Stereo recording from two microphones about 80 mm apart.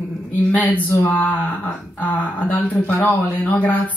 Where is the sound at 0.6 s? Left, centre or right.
Left.